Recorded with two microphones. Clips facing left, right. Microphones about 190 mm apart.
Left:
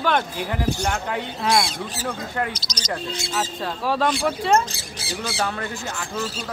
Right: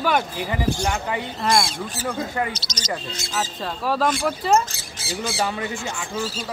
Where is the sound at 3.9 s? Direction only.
Centre (ahead or behind).